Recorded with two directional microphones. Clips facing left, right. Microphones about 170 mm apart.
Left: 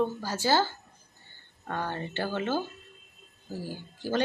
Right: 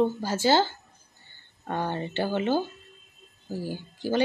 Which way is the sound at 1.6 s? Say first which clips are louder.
Right 4 dB; 20° right (ahead or behind).